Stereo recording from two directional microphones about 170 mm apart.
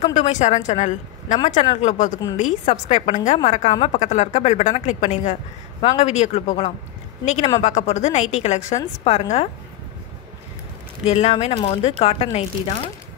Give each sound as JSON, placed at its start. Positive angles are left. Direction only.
{"t": 0.0, "sound": "a woman's voice", "side_deg": 40}
{"t": 11.1, "sound": "a woman's voice", "side_deg": 35}